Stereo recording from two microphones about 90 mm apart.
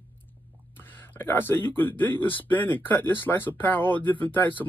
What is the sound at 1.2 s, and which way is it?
Speech, 25° left (ahead or behind).